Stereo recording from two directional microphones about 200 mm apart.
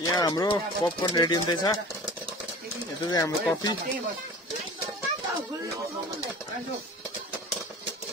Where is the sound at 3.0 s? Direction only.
20° left (ahead or behind).